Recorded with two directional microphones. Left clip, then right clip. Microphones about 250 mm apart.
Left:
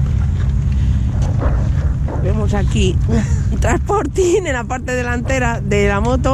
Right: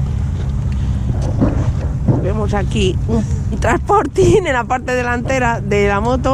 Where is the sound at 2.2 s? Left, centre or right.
Centre.